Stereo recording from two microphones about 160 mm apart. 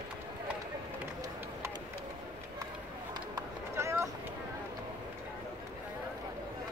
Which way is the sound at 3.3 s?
15° right (ahead or behind).